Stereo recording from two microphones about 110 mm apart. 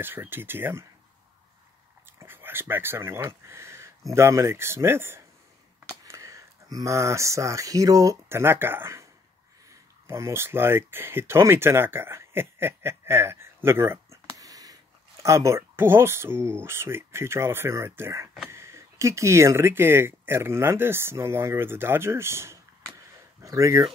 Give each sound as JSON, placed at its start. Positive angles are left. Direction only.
{"t": 0.0, "sound": "speech", "side_deg": -20}
{"t": 2.1, "sound": "speech", "side_deg": -20}